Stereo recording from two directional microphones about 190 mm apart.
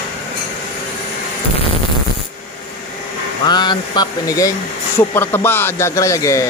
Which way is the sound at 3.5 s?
20° left (ahead or behind).